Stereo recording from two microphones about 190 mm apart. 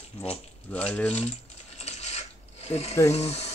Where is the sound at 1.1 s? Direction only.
35° left (ahead or behind).